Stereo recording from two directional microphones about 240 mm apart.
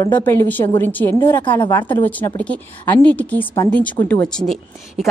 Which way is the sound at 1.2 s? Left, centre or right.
Centre.